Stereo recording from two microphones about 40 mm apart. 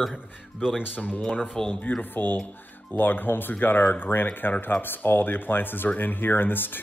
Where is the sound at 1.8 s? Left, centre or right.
Left.